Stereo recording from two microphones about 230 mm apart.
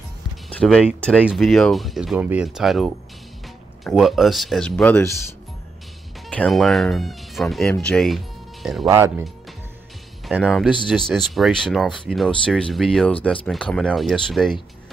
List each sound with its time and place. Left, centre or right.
0.6 s speech: centre
6.2 s speech: centre
8.8 s speech: centre
10.2 s speech: centre